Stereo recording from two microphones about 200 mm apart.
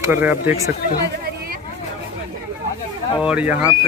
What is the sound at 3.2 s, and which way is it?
Speech, 5° right (ahead or behind).